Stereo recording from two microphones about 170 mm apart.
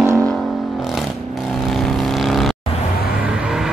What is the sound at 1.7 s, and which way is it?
Vehicle, centre (ahead or behind).